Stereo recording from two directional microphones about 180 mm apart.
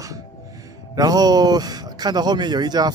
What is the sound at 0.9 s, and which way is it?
Speech, 20° right (ahead or behind).